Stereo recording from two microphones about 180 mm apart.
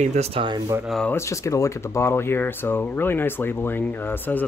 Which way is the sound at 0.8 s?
Centre (ahead or behind).